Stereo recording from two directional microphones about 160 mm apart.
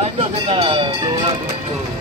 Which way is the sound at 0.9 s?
25° right (ahead or behind).